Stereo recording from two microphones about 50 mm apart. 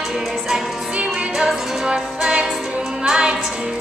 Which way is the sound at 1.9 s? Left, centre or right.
Centre.